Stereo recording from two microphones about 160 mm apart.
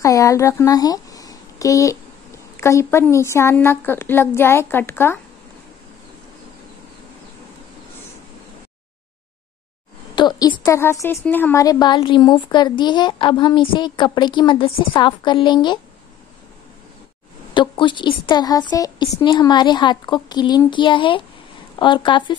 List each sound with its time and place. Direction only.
0.0 s a woman's voice: 20° left (ahead or behind)
10.1 s a woman's voice: 25° left (ahead or behind)
17.6 s a woman's voice: 30° left (ahead or behind)